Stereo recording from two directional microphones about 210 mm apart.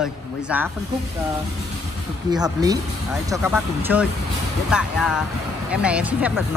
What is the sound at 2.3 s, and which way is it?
A man's voice, 20° right (ahead or behind).